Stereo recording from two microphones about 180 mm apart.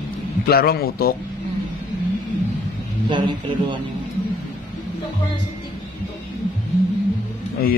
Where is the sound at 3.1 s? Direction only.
25° right (ahead or behind).